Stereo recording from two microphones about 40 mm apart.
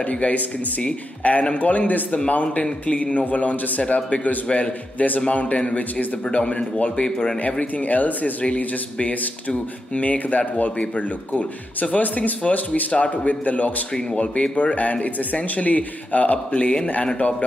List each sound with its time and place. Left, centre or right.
1.2 s a man's voice: left